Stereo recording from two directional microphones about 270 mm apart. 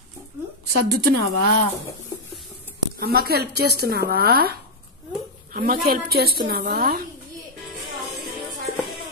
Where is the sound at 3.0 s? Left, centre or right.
Right.